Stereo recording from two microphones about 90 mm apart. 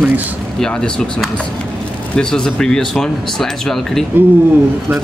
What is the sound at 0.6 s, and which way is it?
Speech, 10° left (ahead or behind).